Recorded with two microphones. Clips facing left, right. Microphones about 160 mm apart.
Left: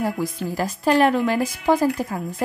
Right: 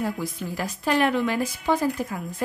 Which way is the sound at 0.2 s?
35° left (ahead or behind).